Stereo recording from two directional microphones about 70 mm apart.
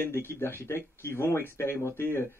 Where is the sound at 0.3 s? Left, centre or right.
Left.